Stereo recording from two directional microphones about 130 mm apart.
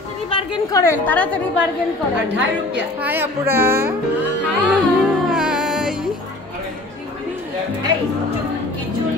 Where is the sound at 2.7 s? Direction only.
15° right (ahead or behind).